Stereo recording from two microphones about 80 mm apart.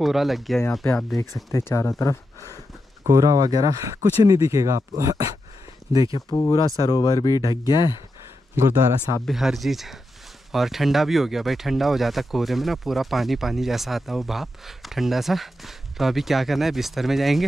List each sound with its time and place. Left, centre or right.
0.0 s speech: centre
1.7 s speech: left
3.1 s speech: right
6.3 s speech: left
6.9 s speech: left
8.5 s a man's voice: right
9.2 s speech: centre